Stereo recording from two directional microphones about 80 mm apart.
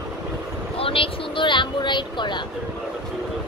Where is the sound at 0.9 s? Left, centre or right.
Left.